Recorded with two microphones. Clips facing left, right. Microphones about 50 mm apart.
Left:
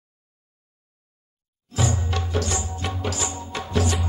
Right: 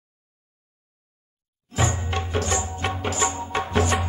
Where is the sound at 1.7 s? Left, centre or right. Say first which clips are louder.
Right 1 dB; right.